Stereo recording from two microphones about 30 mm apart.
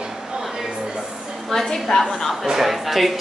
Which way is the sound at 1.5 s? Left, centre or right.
Centre.